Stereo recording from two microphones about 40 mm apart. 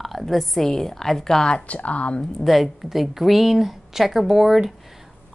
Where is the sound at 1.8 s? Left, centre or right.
Left.